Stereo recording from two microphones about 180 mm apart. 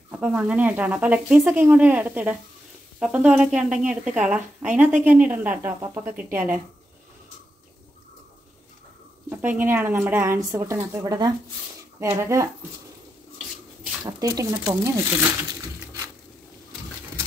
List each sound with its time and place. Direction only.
0.1 s speech: 10° right (ahead or behind)
9.3 s speech: 10° right (ahead or behind)
14.0 s speech: 15° right (ahead or behind)